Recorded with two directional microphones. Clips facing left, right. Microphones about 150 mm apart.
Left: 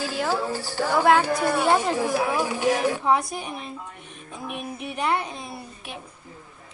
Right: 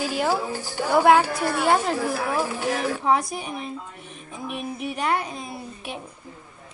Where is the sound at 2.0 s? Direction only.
15° left (ahead or behind).